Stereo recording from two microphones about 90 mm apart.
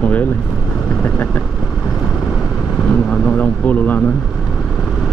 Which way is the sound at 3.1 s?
15° left (ahead or behind).